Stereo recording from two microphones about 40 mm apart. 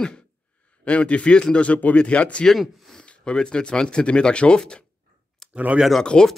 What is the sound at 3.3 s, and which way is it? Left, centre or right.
Speech, left.